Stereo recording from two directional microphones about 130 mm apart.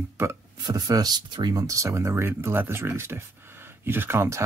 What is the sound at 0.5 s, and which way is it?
Speech, 30° right (ahead or behind).